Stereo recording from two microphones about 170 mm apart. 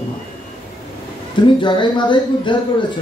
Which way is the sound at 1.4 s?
30° left (ahead or behind).